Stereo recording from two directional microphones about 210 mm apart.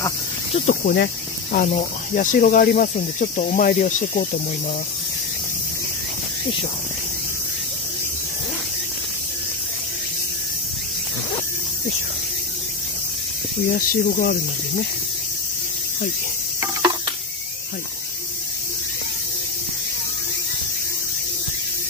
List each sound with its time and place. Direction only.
0.7 s speech: 45° left (ahead or behind)
1.7 s cricket: 40° left (ahead or behind)
13.7 s speech: 45° left (ahead or behind)